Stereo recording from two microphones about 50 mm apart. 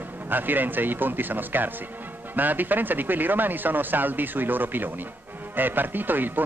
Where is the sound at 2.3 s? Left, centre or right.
Right.